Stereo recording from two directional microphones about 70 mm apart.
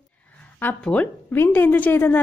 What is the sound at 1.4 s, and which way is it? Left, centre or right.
Speech, left.